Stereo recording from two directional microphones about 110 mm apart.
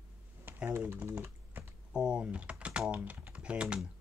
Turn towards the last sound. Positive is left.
turn(degrees=-10)  # may be behind; listen again after turning